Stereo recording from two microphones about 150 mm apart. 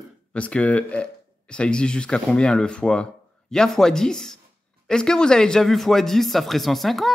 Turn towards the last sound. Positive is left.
turn(degrees=0)  # may be behind; listen again after turning